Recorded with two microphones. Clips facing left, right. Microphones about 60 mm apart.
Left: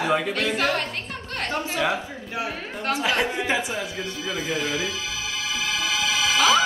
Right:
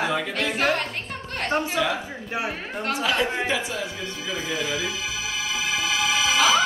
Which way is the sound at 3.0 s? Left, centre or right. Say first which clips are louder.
Even; left.